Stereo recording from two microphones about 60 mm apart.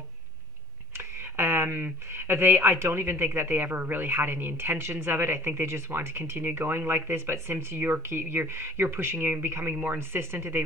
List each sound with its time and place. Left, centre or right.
0.9 s speech: right